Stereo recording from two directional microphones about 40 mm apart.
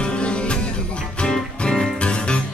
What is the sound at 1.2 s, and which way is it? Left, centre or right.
Music, centre.